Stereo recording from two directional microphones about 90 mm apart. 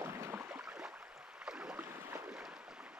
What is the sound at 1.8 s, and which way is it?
Boat, 25° right (ahead or behind).